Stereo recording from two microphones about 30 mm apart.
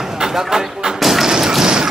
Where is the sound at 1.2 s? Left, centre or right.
Centre.